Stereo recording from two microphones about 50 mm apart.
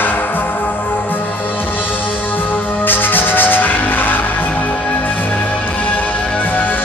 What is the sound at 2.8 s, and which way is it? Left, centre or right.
Music, left.